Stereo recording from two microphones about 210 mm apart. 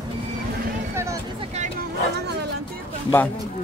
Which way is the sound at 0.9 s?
15° right (ahead or behind).